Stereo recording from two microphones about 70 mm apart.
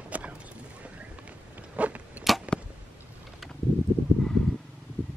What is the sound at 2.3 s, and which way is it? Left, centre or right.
Arrow, centre.